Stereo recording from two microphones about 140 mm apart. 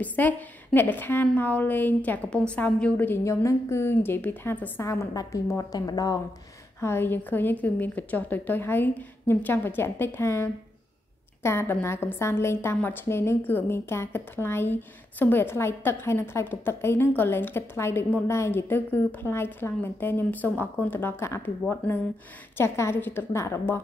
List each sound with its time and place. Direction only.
0.0 s a woman's voice: 10° left (ahead or behind)